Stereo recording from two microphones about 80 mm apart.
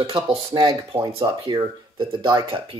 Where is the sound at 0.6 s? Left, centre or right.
Right.